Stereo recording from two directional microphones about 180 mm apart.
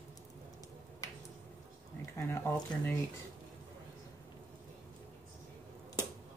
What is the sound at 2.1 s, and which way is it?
Speech, 15° left (ahead or behind).